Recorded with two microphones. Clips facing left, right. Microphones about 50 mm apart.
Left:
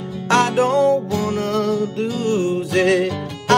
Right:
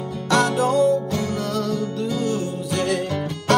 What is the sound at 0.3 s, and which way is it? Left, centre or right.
Music, left.